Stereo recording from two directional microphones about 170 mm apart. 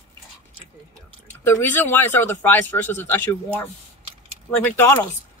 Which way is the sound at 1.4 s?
15° left (ahead or behind).